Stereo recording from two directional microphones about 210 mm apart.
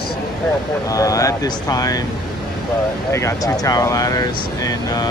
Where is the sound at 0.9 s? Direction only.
15° left (ahead or behind).